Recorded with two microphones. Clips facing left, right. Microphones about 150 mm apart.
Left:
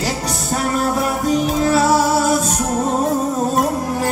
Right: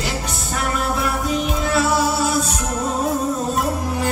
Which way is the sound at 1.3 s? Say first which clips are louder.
Left 5 dB; 40° left (ahead or behind).